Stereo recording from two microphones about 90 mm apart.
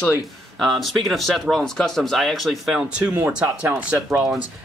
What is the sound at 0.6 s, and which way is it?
Speech, centre (ahead or behind).